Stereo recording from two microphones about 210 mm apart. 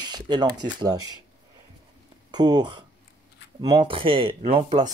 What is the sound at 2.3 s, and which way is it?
Speech, 20° right (ahead or behind).